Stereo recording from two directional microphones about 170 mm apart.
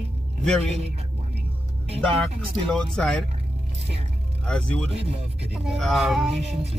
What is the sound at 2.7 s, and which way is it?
Speech, 5° left (ahead or behind).